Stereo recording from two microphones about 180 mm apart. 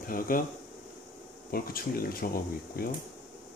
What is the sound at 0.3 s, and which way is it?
Speech, 50° left (ahead or behind).